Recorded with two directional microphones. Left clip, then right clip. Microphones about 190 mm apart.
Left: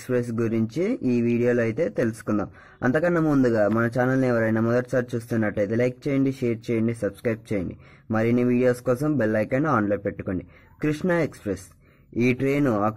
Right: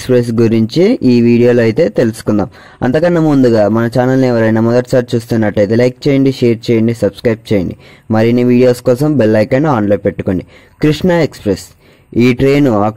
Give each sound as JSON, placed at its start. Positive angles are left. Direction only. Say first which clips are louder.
{"t": 0.0, "sound": "speech", "louder": "right 14 dB", "side_deg": -40}